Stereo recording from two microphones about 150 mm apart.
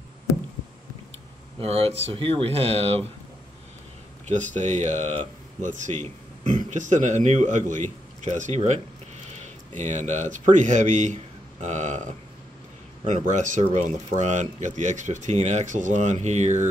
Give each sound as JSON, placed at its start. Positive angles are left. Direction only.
{"t": 1.6, "sound": "speech", "side_deg": -40}
{"t": 4.3, "sound": "speech", "side_deg": -55}
{"t": 13.0, "sound": "speech", "side_deg": -55}